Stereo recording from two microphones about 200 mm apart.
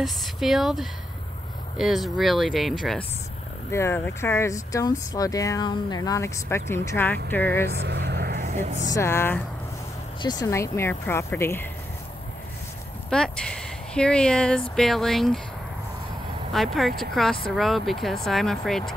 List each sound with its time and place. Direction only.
0.0 s speech: centre (ahead or behind)
3.7 s speech: 10° left (ahead or behind)
7.7 s vehicle: 55° right (ahead or behind)
8.5 s speech: 35° right (ahead or behind)
8.9 s speech: 10° left (ahead or behind)
13.1 s speech: 5° left (ahead or behind)
16.5 s speech: centre (ahead or behind)